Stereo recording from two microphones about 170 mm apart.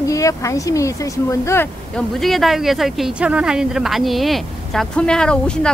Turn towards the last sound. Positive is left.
turn(degrees=5)  # may be behind; listen again after turning